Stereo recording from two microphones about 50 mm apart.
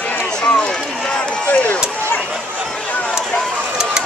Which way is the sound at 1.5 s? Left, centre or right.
Left.